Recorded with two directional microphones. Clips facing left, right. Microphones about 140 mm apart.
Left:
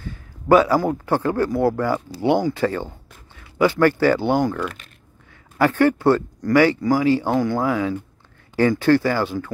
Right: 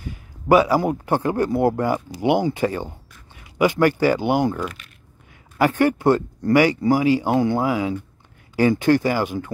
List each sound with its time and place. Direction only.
0.0 s a man's voice: 15° right (ahead or behind)